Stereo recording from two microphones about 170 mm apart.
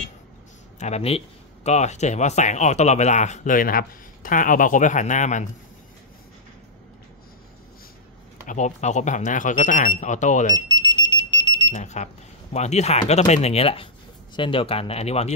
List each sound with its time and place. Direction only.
0.7 s speech: 40° left (ahead or behind)
8.5 s speech: 45° left (ahead or behind)
10.7 s smoke detector: 25° left (ahead or behind)
11.7 s speech: 40° left (ahead or behind)